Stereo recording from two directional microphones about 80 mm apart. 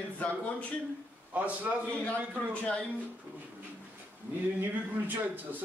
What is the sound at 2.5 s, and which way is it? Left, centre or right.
Speech, centre.